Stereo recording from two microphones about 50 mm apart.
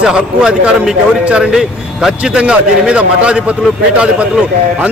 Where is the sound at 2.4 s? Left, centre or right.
Right.